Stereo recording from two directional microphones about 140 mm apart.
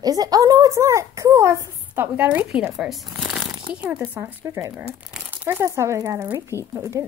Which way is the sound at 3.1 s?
5° right (ahead or behind).